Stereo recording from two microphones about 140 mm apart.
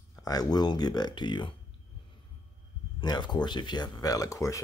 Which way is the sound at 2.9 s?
30° left (ahead or behind).